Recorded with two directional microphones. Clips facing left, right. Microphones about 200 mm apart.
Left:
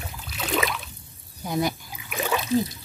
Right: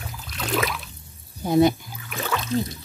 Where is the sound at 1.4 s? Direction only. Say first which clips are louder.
Right 8 dB; 25° right (ahead or behind).